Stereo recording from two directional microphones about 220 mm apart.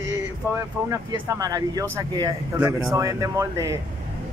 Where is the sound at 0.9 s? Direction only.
15° right (ahead or behind).